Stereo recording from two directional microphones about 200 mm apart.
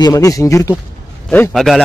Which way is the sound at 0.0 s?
15° left (ahead or behind).